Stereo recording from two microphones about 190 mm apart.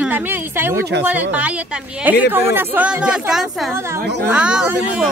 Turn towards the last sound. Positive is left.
turn(degrees=-5)  # may be behind; listen again after turning